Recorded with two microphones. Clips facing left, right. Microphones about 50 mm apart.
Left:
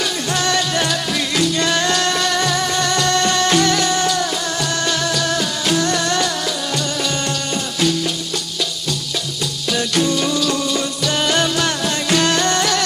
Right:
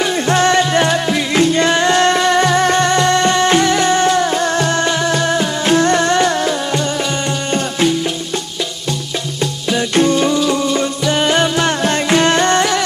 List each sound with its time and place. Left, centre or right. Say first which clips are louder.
0.0 s music: right 7 dB; right
9.7 s music: right 4 dB; right